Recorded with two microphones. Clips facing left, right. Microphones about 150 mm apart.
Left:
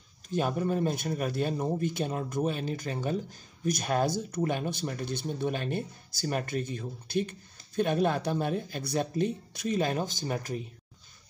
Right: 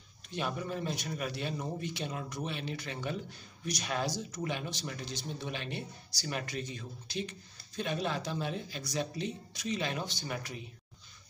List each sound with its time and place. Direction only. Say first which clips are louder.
0.3 s speech: left 7 dB; 45° left (ahead or behind)